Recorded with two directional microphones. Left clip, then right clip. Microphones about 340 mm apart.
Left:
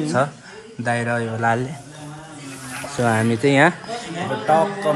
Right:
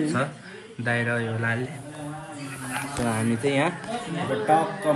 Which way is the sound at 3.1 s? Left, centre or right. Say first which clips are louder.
Left 8 dB; left.